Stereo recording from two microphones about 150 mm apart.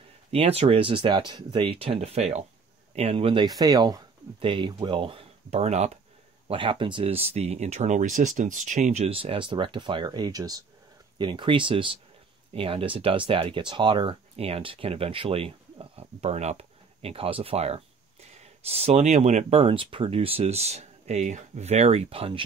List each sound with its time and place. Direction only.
0.3 s speech: 40° right (ahead or behind)
3.4 s speech: 25° right (ahead or behind); by 5.9 s 45° right (ahead or behind)
6.4 s speech: 35° right (ahead or behind)